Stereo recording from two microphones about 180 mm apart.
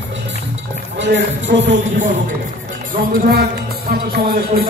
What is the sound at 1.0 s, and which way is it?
Speech, 80° right.